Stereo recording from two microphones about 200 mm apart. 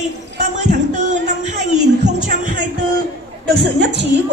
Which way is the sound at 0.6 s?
40° right (ahead or behind).